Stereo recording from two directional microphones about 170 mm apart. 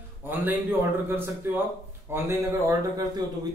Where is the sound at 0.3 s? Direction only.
10° right (ahead or behind).